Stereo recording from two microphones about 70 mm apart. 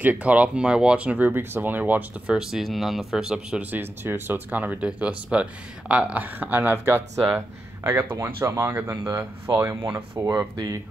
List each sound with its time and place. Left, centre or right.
0.0 s speech: right
1.3 s speech: right
2.3 s speech: centre
3.7 s speech: right
8.2 s speech: right
10.5 s speech: right